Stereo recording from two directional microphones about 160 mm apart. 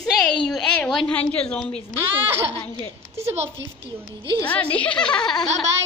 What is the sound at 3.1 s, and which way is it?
Speech, 40° right (ahead or behind).